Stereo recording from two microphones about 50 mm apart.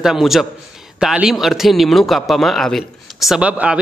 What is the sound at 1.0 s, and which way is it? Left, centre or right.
Speech, centre.